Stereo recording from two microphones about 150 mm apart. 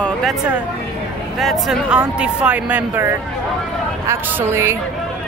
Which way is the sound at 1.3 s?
Centre (ahead or behind).